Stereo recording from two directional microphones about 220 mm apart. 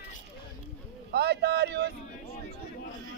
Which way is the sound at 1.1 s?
50° right (ahead or behind).